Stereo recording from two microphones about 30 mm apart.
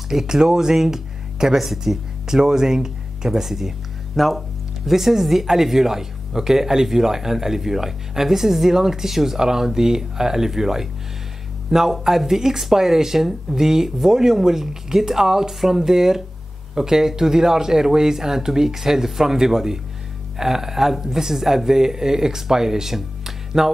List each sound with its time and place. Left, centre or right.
0.3 s speech: centre
0.7 s a sound: centre
1.6 s speech: centre
2.5 s speech: centre